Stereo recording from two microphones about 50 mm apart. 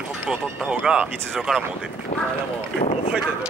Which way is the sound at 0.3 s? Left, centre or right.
Centre.